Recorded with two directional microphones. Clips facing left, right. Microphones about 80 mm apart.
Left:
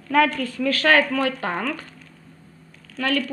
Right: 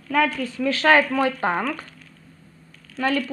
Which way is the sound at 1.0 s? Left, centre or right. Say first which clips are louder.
Right 2 dB; centre.